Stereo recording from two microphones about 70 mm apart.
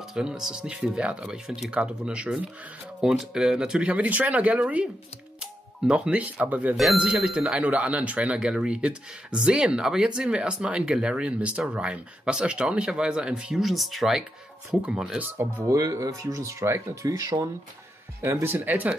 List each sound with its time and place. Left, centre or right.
0.1 s speech: centre
15.6 s speech: right
18.2 s speech: right